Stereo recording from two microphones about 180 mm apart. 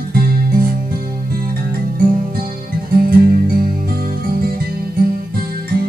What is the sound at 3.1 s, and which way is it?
Music, 55° right (ahead or behind).